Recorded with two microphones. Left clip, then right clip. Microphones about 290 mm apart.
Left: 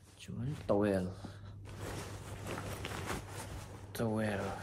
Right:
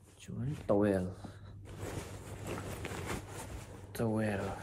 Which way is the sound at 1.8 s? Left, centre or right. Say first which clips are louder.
Right 1 dB; centre.